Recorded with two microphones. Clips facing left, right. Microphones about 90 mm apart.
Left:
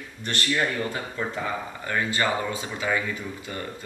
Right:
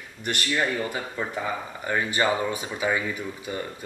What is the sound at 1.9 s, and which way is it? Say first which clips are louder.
Speech: right 2 dB; 20° right (ahead or behind).